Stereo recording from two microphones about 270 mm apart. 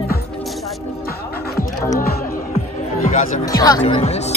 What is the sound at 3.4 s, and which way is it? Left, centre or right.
Speech, centre.